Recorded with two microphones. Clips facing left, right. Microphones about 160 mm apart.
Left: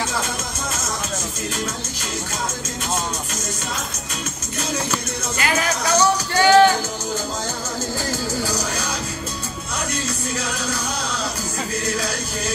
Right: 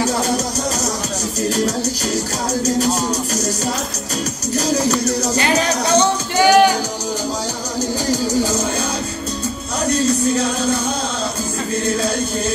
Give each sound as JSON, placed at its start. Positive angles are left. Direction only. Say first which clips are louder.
{"t": 2.6, "sound": "music", "louder": "right 9 dB", "side_deg": -40}
{"t": 4.6, "sound": "music", "louder": "right 8 dB", "side_deg": -35}
{"t": 6.4, "sound": "speech", "louder": "right 1 dB", "side_deg": -15}
{"t": 8.1, "sound": "music", "louder": "right 9 dB", "side_deg": -15}
{"t": 9.8, "sound": "music", "louder": "right 13 dB", "side_deg": -30}
{"t": 11.8, "sound": "music", "louder": "right 9 dB", "side_deg": -30}